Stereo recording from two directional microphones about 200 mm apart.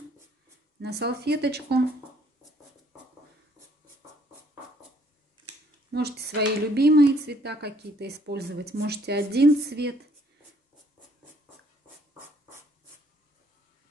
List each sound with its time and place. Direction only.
0.7 s speech: 55° right (ahead or behind)
5.9 s speech: 55° right (ahead or behind)